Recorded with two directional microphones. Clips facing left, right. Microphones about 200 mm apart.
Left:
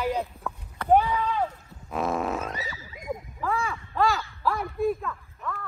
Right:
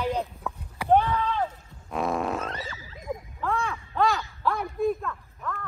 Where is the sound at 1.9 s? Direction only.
Centre (ahead or behind).